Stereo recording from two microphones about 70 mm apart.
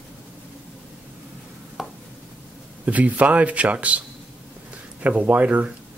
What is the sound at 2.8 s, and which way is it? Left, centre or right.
Speech, right.